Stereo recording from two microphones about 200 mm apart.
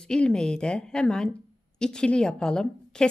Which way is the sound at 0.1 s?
5° left (ahead or behind).